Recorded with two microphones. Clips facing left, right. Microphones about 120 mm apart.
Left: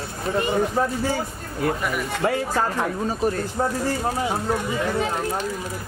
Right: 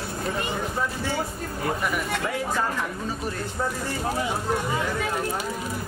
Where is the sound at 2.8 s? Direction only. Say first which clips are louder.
Left 6 dB; 45° left (ahead or behind).